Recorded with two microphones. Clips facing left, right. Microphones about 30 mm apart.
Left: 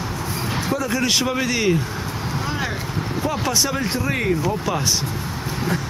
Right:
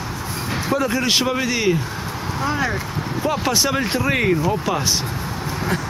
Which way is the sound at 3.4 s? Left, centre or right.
Right.